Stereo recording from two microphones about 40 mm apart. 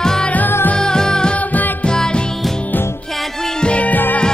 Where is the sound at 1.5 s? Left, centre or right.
Left.